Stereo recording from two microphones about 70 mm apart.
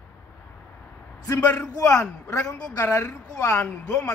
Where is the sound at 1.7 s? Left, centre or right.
Left.